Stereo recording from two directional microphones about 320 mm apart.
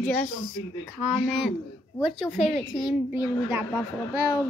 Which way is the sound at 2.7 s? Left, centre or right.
Centre.